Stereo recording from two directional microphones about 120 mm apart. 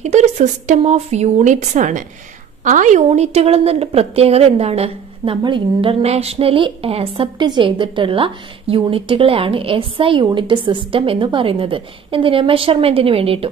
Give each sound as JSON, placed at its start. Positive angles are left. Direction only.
{"t": 0.0, "sound": "a woman's voice", "side_deg": -70}
{"t": 7.3, "sound": "a woman's voice", "side_deg": -40}